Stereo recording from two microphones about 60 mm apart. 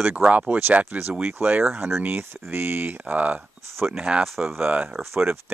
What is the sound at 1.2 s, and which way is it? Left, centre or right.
Speech, right.